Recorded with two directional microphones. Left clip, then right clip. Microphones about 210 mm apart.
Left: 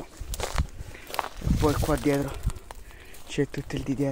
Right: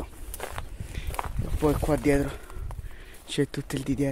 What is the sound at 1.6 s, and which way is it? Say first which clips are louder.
Speech: right 1 dB; 20° right (ahead or behind).